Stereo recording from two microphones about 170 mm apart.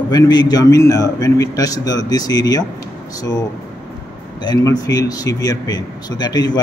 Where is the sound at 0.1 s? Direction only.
25° left (ahead or behind).